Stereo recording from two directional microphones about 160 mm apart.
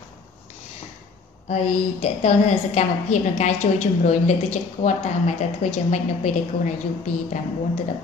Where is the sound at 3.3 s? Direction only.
45° left (ahead or behind).